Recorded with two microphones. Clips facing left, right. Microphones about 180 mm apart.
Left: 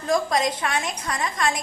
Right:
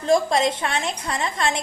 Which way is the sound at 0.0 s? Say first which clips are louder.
Right 3 dB; 25° right (ahead or behind).